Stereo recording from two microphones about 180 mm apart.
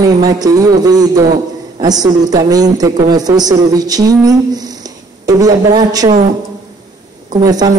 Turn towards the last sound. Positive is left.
turn(degrees=-20)  # may be behind; listen again after turning